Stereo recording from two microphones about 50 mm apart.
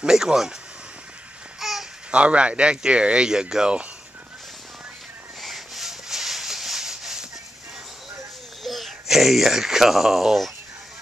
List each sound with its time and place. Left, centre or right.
0.0 s speech: centre
1.6 s babbling: centre
2.0 s speech: right
5.4 s rub: centre
8.6 s speech: centre